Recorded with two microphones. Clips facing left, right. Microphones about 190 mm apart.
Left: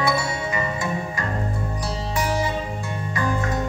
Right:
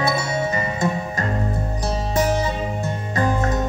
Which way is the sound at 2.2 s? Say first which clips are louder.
Right 4 dB; 20° right (ahead or behind).